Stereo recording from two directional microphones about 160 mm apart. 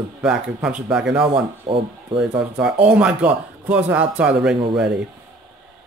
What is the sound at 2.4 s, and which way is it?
Speech, 5° right (ahead or behind).